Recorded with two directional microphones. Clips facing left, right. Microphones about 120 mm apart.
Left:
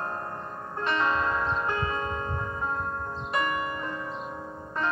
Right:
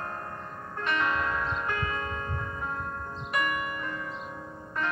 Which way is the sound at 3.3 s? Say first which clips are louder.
Left 2 dB; 30° left (ahead or behind).